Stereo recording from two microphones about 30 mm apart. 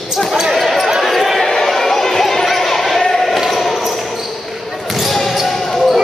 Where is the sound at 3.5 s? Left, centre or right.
Centre.